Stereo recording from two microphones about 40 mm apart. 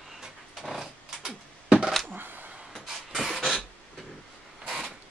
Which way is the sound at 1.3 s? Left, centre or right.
Right.